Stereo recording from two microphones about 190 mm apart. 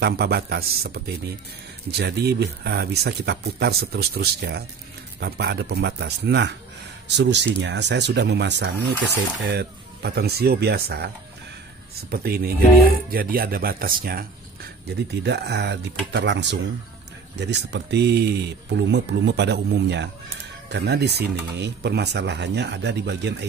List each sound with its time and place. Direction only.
0.0 s speech: 55° right (ahead or behind)
15.2 s speech: 60° right (ahead or behind)